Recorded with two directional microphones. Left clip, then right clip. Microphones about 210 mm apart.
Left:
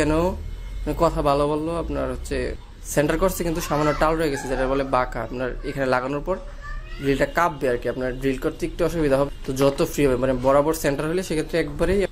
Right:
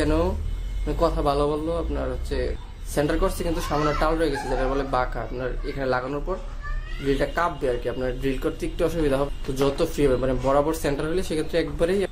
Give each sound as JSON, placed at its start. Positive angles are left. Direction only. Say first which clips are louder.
{"t": 0.0, "sound": "a man's voice", "louder": "left 2 dB", "side_deg": 30}